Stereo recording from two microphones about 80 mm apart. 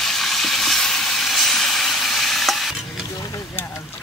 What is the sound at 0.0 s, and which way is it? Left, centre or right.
Sizzle, centre.